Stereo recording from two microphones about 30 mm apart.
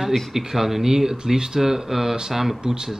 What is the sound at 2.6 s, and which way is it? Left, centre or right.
Speech, right.